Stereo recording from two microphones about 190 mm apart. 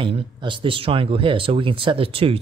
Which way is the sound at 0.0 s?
30° right (ahead or behind).